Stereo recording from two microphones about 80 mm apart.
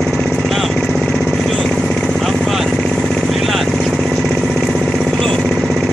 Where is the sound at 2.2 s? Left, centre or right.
Centre.